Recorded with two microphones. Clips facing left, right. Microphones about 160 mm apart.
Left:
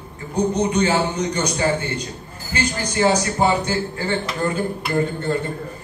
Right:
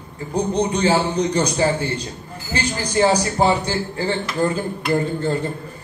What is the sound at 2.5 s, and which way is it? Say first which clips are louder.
A man's voice: right 1 dB; 35° right (ahead or behind).